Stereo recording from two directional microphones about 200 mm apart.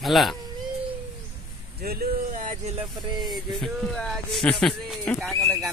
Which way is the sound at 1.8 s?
50° right (ahead or behind).